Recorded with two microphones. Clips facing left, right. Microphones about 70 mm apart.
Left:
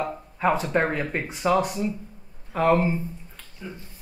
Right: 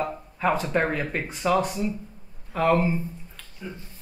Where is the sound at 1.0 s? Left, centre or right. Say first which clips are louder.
Left 1 dB; centre.